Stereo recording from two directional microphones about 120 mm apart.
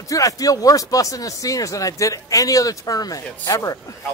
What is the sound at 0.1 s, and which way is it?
Speech, 30° left (ahead or behind).